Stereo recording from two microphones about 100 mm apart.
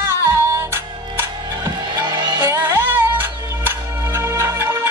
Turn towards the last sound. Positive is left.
turn(degrees=-25)  # may be behind; listen again after turning